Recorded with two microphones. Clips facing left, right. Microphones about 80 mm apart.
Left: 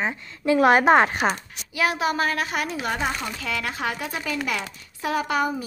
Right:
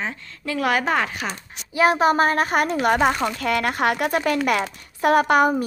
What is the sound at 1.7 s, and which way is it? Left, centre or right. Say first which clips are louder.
Speech: right 6 dB; right.